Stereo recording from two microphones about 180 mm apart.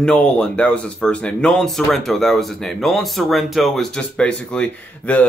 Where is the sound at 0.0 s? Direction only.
5° left (ahead or behind).